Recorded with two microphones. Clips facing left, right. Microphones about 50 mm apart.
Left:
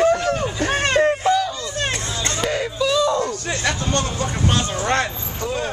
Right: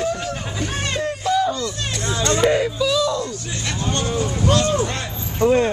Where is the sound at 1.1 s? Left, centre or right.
Left.